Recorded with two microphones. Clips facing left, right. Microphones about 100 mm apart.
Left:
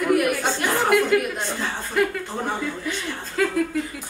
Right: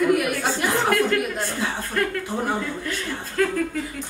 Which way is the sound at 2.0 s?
10° left (ahead or behind).